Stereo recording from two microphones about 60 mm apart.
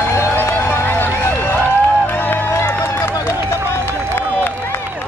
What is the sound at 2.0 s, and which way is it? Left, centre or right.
Run, left.